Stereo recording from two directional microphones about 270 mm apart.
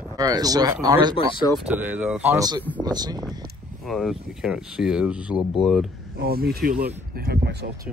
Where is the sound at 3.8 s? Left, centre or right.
Centre.